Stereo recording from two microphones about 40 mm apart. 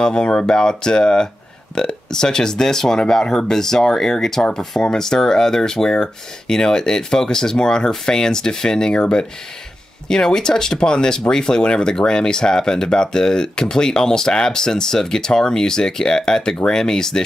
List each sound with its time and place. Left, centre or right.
0.0 s speech: left
10.0 s speech: centre